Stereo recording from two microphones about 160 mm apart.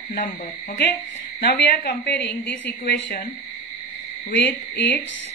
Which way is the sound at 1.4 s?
85° left.